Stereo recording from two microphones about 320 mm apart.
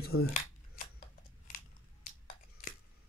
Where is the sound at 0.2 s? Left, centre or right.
Left.